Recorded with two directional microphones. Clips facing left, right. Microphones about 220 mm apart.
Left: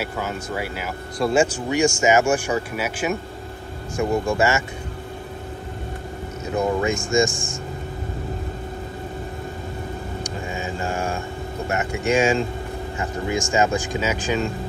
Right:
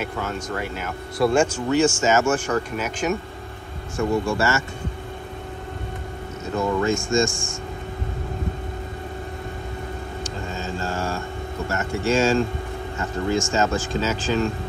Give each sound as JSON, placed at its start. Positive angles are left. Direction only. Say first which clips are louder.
{"t": 0.0, "sound": "speech", "louder": "even", "side_deg": 10}
{"t": 6.5, "sound": "speech", "louder": "even", "side_deg": 15}
{"t": 10.2, "sound": "a sound", "louder": "left 1 dB", "side_deg": 15}
{"t": 11.7, "sound": "speech", "louder": "left 1 dB", "side_deg": 20}